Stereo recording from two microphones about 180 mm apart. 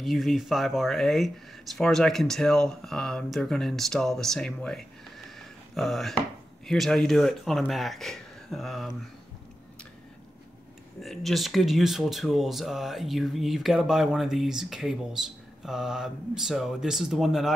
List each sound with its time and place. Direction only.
0.0 s speech: centre (ahead or behind)
5.4 s a sound: centre (ahead or behind)
6.6 s speech: centre (ahead or behind)
11.0 s speech: centre (ahead or behind)